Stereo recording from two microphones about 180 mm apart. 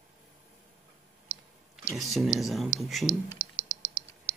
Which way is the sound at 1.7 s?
Centre (ahead or behind).